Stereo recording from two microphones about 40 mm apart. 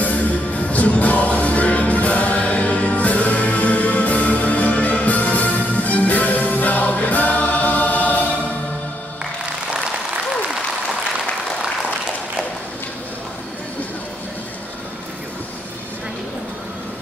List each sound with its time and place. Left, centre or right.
0.0 s music: left